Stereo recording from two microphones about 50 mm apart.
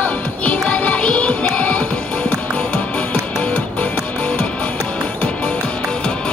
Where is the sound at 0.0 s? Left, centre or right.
Left.